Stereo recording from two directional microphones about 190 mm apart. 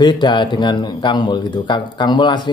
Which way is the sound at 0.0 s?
25° left (ahead or behind).